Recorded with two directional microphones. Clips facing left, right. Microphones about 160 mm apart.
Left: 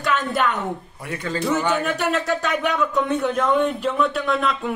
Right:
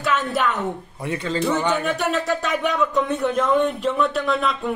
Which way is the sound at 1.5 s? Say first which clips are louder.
Left 1 dB; centre (ahead or behind).